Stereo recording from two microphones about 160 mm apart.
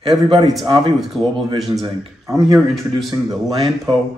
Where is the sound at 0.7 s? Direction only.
30° right (ahead or behind).